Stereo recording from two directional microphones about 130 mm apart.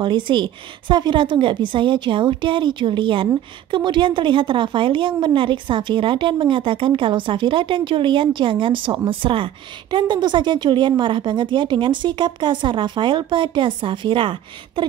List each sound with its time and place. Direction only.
0.0 s a woman's voice: 40° right (ahead or behind)